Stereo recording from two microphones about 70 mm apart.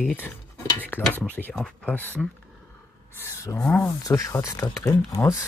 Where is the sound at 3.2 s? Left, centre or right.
Left.